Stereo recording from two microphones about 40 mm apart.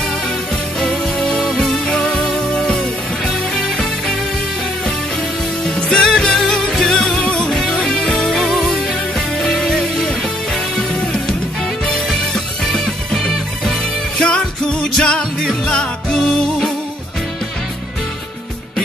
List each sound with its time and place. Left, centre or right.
0.7 s music: centre
2.2 s music: centre
5.7 s music: centre
7.2 s music: left
7.4 s music: centre
7.8 s music: centre
12.7 s music: centre
15.0 s music: centre